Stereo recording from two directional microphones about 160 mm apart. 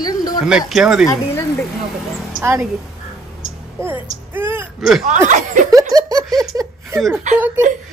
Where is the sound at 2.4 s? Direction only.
15° right (ahead or behind).